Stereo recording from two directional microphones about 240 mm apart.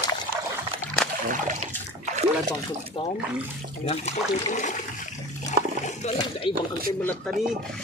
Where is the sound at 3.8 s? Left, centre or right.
Left.